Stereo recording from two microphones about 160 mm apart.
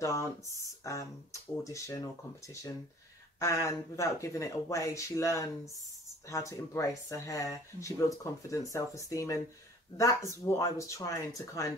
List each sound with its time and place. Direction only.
0.0 s speech: 20° left (ahead or behind)